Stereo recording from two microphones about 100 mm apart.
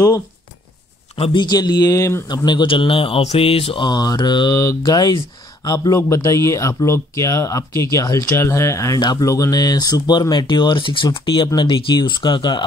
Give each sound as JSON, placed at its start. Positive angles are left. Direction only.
{"t": 1.4, "sound": "speech", "side_deg": 40}
{"t": 2.2, "sound": "speech", "side_deg": 45}
{"t": 3.8, "sound": "speech", "side_deg": 45}
{"t": 4.6, "sound": "speech", "side_deg": 35}